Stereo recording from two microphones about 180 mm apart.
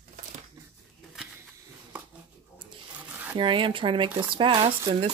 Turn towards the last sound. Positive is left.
turn(degrees=-25)  # may be behind; listen again after turning